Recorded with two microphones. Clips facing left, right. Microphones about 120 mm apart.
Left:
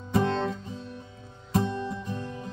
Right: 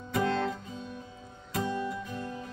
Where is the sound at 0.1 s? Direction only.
25° left (ahead or behind).